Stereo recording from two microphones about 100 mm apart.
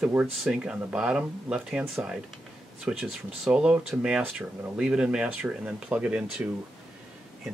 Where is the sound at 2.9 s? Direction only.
5° right (ahead or behind).